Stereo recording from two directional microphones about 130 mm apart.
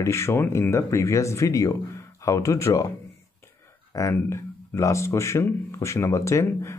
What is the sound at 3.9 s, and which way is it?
A man's voice, 25° left (ahead or behind).